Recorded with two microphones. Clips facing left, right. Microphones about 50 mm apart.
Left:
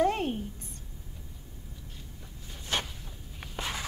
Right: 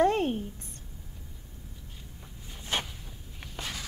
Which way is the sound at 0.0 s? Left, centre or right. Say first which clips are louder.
Right 2 dB; right.